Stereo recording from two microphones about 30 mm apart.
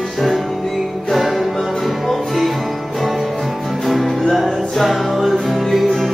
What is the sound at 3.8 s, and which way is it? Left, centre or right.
Music, centre.